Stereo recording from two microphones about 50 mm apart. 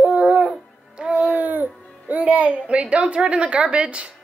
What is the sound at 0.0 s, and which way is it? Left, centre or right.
Dog, right.